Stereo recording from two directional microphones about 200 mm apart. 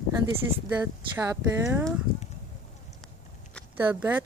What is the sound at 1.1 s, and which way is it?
Speech, 15° right (ahead or behind).